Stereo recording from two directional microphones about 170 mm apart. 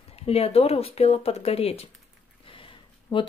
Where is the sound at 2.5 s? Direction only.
30° left (ahead or behind).